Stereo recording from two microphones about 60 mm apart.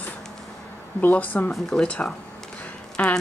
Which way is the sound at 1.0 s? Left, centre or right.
Left.